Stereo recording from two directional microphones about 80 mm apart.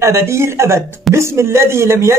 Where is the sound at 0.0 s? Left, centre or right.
Right.